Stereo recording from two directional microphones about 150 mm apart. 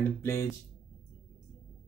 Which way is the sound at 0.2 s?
15° left (ahead or behind).